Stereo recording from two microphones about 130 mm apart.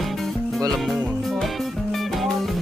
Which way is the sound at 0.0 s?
Centre (ahead or behind).